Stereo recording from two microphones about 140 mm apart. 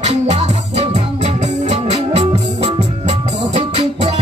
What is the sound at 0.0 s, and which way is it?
Music, 50° right (ahead or behind).